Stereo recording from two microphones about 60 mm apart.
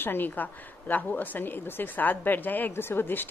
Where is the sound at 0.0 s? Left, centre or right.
Left.